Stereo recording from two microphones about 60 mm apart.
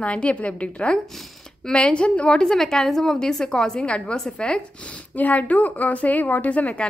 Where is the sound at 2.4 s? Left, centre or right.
Centre.